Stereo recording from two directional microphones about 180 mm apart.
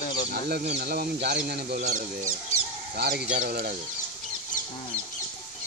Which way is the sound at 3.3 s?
55° right (ahead or behind).